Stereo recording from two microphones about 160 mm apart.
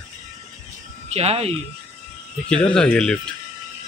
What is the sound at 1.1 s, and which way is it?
Speech, 40° right (ahead or behind).